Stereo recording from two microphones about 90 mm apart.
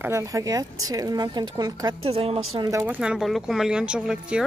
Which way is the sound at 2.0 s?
90° right.